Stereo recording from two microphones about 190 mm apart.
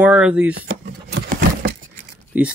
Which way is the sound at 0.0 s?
5° right (ahead or behind).